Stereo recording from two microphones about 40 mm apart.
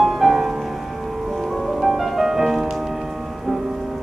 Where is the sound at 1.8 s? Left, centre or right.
Centre.